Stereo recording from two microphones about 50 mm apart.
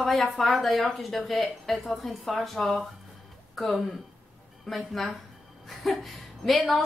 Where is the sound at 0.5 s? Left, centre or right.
Centre.